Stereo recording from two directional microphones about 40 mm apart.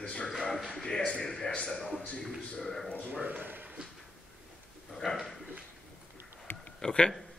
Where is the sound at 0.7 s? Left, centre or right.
Centre.